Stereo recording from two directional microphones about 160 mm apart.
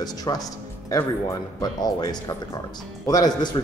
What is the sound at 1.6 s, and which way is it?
Speech, 25° left (ahead or behind).